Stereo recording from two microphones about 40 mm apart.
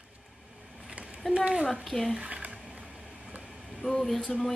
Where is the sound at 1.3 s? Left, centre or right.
Right.